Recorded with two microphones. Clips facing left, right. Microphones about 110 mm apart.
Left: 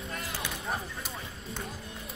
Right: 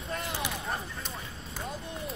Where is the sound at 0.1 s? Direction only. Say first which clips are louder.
Right 5 dB; 20° right (ahead or behind).